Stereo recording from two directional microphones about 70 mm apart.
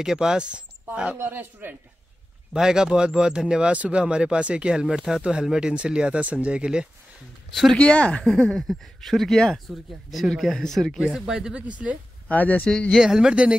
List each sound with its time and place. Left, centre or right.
0.0 s speech: centre
1.1 s speech: right
2.5 s speech: centre
7.7 s speech: centre
8.2 s speech: centre
11.0 s speech: centre
12.3 s speech: left
12.6 s speech: centre
13.0 s speech: centre